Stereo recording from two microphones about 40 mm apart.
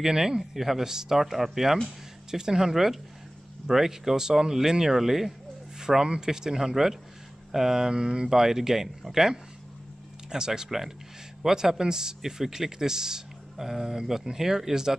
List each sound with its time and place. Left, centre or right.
0.0 s speech: centre
8.3 s speech: centre
10.3 s speech: centre